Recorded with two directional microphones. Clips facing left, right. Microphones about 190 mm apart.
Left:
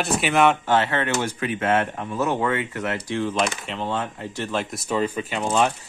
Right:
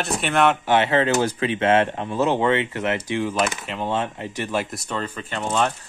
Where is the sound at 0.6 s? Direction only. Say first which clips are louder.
Right 3 dB; 20° right (ahead or behind).